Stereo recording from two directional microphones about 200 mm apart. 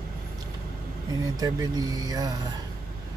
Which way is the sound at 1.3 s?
20° right (ahead or behind).